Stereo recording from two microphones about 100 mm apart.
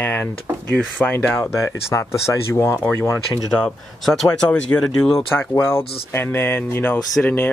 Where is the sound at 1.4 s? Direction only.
30° left (ahead or behind).